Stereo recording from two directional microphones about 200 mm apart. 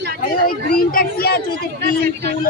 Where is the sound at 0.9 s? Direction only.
45° left (ahead or behind).